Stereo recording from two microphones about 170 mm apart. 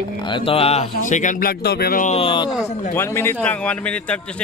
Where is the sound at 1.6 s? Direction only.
65° left (ahead or behind).